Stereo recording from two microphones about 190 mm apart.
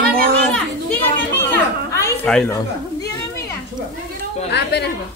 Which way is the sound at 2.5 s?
15° left (ahead or behind).